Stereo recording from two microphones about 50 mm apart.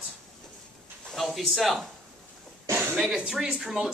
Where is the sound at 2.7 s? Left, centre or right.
Right.